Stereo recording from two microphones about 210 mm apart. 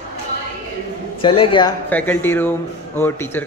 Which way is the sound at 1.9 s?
10° left (ahead or behind).